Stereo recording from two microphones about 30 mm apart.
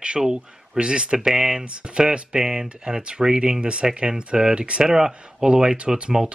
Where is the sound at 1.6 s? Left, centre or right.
Right.